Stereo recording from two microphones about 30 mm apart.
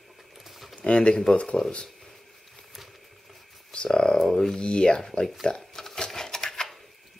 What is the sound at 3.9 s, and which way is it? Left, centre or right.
Speech, centre.